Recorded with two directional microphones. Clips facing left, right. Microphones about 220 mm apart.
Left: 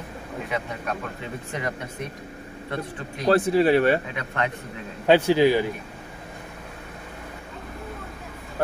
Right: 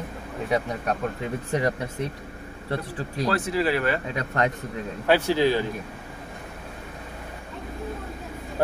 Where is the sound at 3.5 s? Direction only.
30° left (ahead or behind).